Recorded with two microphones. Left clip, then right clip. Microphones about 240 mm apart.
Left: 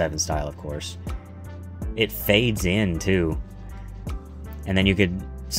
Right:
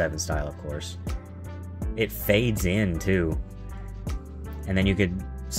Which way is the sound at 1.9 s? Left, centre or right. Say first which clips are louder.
Left 3 dB; centre.